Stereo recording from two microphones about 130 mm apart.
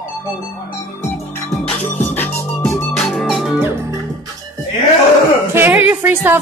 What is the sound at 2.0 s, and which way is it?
Music, 15° left (ahead or behind).